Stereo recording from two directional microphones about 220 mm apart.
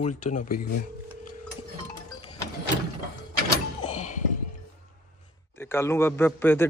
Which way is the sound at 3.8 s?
30° left (ahead or behind).